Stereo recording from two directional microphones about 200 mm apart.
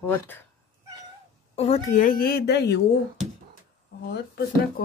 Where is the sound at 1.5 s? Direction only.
30° left (ahead or behind); by 2.8 s 55° left (ahead or behind).